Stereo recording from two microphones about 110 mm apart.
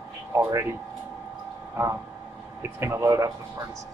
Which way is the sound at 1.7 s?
25° right (ahead or behind).